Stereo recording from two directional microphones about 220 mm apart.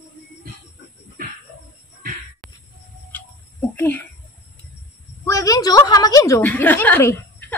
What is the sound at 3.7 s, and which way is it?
Speech, 10° left (ahead or behind).